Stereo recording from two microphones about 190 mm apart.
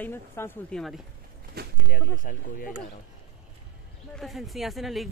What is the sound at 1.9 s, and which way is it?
Speech, 45° left (ahead or behind).